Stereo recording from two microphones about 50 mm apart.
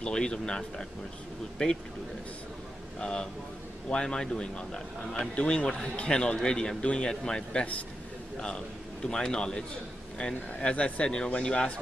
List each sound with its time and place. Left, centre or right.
0.0 s a man's voice: centre
3.0 s a man's voice: centre